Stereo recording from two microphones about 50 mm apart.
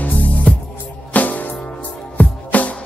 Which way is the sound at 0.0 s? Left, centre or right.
Left.